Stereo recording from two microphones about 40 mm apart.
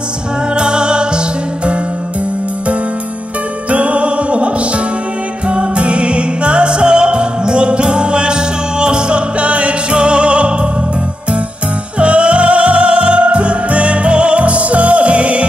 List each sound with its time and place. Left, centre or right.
0.6 s music: right
3.7 s music: right
12.0 s music: right